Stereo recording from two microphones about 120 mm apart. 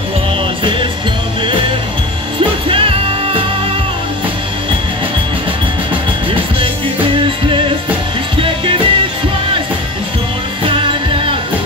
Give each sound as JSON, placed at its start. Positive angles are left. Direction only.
{"t": 2.7, "sound": "music", "side_deg": -50}
{"t": 7.2, "sound": "music", "side_deg": -45}
{"t": 10.6, "sound": "music", "side_deg": -45}